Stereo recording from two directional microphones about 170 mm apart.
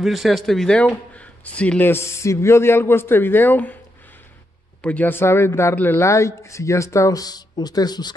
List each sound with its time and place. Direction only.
0.0 s speech: centre (ahead or behind)
4.8 s speech: 10° left (ahead or behind)